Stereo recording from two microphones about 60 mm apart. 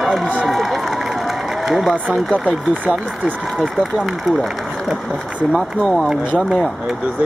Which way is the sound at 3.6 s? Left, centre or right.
Centre.